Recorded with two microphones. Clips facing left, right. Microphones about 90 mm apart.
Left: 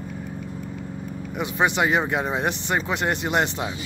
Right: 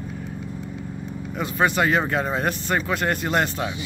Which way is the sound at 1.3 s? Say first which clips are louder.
Right 1 dB; 15° left (ahead or behind).